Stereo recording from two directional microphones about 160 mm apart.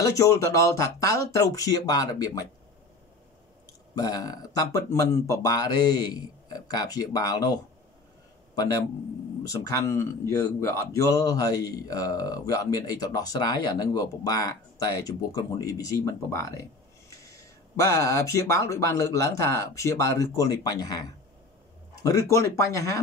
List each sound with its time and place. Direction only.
0.0 s speech: 20° left (ahead or behind)
3.9 s speech: 25° left (ahead or behind)